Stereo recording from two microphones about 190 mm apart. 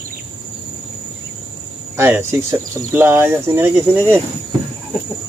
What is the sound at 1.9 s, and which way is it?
Speech, 15° right (ahead or behind).